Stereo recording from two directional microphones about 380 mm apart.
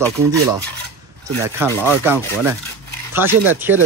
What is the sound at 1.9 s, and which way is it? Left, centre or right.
Speech, centre.